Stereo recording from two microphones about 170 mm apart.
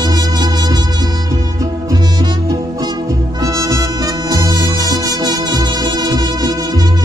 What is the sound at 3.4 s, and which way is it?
Music, 20° right (ahead or behind).